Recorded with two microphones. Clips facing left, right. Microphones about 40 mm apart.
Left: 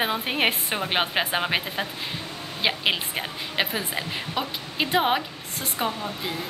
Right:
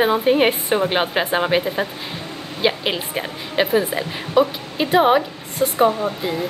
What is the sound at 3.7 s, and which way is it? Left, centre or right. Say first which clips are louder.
Speech: right 9 dB; centre.